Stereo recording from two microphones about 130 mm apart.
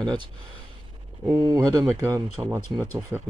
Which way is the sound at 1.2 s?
30° right (ahead or behind).